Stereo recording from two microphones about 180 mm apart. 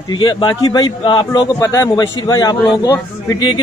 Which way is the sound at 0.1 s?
25° left (ahead or behind).